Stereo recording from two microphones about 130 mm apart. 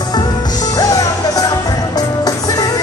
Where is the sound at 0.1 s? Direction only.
30° left (ahead or behind).